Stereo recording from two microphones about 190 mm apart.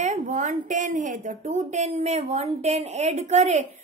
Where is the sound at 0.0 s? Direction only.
40° right (ahead or behind).